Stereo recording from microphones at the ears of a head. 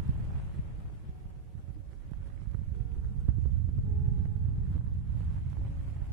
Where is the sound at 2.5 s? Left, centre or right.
Right.